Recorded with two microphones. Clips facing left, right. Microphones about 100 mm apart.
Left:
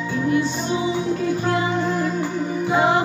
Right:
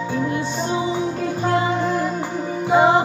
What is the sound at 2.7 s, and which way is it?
Music, 25° right (ahead or behind).